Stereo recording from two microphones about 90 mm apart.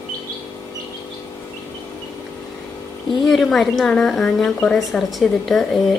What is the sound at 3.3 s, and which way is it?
A woman's voice, centre (ahead or behind).